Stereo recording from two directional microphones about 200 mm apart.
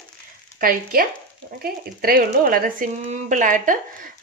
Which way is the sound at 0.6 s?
45° right (ahead or behind).